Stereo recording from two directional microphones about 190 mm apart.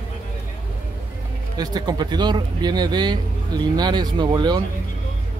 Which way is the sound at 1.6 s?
20° right (ahead or behind).